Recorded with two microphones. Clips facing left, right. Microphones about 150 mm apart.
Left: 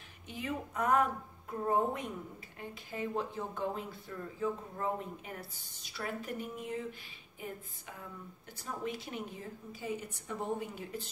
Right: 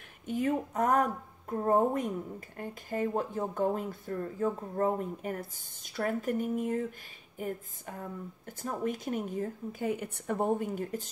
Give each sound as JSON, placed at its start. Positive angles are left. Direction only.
{"t": 0.3, "sound": "speech", "side_deg": -45}